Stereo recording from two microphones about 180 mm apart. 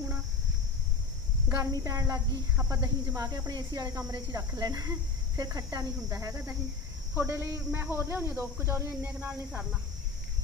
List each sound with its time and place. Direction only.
1.5 s speech: 20° right (ahead or behind)